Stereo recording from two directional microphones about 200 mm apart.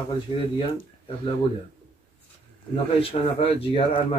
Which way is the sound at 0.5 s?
25° left (ahead or behind).